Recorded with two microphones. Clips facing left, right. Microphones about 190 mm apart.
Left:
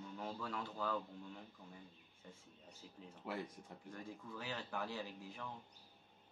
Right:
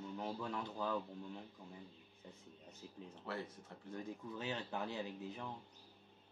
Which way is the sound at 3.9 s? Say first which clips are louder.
Right 5 dB; 20° right (ahead or behind).